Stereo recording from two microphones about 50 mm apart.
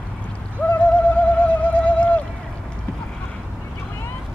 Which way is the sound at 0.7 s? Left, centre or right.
Left.